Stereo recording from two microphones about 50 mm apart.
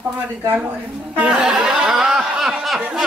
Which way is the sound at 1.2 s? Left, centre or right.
Centre.